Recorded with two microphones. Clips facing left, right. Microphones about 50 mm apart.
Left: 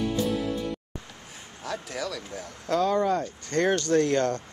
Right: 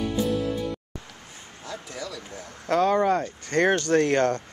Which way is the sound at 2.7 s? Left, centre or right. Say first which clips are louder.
Right 3 dB; right.